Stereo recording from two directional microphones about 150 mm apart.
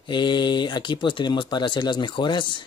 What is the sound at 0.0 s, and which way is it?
Speech, 30° left (ahead or behind).